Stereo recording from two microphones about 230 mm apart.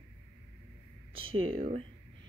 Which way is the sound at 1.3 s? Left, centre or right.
Right.